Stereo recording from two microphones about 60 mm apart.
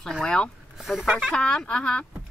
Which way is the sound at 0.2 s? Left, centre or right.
Centre.